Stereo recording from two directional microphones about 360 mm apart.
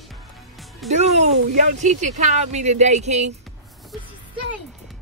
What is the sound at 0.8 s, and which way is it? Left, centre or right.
Speech, centre.